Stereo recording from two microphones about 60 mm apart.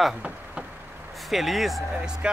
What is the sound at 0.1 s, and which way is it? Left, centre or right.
Vehicle, centre.